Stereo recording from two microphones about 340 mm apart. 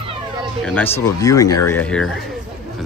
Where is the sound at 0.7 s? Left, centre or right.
Centre.